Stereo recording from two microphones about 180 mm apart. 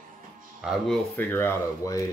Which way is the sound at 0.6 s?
Centre (ahead or behind).